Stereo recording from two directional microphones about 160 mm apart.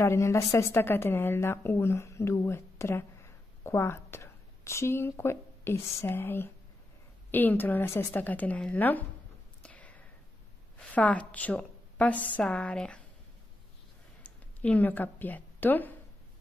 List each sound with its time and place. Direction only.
0.0 s a woman's voice: 15° left (ahead or behind)
9.6 s a sound: 10° left (ahead or behind)
10.8 s a woman's voice: 10° left (ahead or behind)
14.2 s speech: 10° left (ahead or behind)